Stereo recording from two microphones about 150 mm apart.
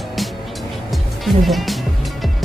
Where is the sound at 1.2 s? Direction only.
Centre (ahead or behind).